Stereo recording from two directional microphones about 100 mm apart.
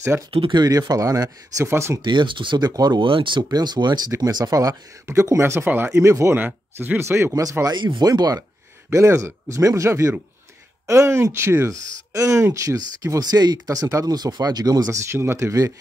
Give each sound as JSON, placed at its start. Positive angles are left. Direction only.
{"t": 0.3, "sound": "speech", "side_deg": -65}
{"t": 0.6, "sound": "speech", "side_deg": -40}
{"t": 2.0, "sound": "speech", "side_deg": -55}
{"t": 3.1, "sound": "speech", "side_deg": -60}
{"t": 3.5, "sound": "speech", "side_deg": -45}
{"t": 6.3, "sound": "speech", "side_deg": -15}
{"t": 7.6, "sound": "speech", "side_deg": -50}